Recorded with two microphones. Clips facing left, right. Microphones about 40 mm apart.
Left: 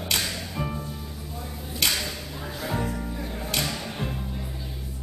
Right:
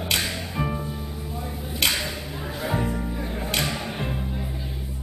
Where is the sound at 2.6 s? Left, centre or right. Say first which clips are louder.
Right 3 dB; centre.